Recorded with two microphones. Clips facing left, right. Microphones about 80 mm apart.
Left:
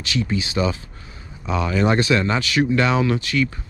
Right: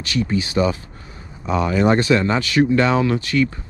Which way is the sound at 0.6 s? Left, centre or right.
Right.